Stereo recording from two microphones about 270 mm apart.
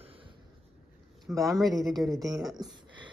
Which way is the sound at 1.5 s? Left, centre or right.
Centre.